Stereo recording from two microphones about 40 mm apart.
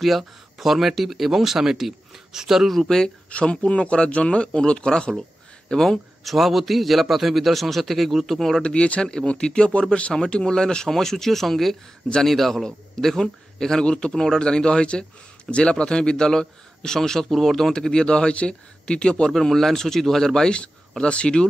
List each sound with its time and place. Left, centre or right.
0.0 s speech: centre
2.7 s speech: centre
3.3 s speech: left
6.2 s a man's voice: centre
8.6 s speech: left
9.0 s a man's voice: centre
12.6 s speech: centre
19.3 s speech: centre
21.0 s speech: left